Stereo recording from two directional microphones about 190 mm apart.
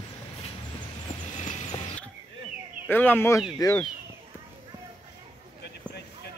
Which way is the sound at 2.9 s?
10° left (ahead or behind).